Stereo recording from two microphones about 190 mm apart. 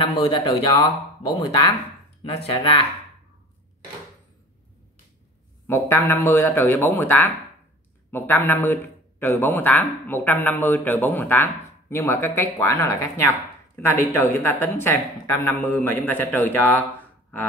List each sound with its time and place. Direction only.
0.0 s speech: 25° left (ahead or behind)
2.2 s speech: 30° left (ahead or behind)
5.7 s a man's voice: 15° left (ahead or behind)